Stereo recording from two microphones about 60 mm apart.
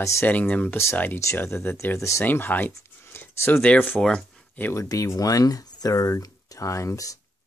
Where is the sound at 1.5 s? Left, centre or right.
Left.